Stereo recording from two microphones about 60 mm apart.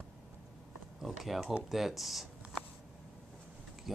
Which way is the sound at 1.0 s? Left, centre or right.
Centre.